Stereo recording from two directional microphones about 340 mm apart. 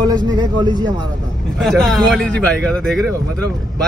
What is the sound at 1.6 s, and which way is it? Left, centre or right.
A man's voice, centre.